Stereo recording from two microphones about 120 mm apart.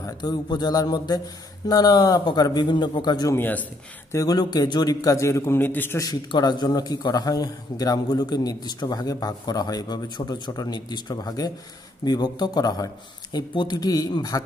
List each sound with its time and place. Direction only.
0.0 s a man's voice: 35° left (ahead or behind)
3.3 s speech: 15° left (ahead or behind)
4.1 s a man's voice: 30° left (ahead or behind)
5.9 s a man's voice: 35° left (ahead or behind)